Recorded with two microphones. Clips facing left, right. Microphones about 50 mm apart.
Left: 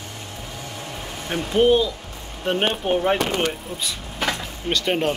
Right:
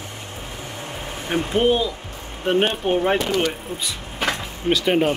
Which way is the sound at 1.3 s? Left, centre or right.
Right.